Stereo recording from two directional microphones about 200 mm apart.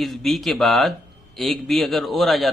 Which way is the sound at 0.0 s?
Centre (ahead or behind).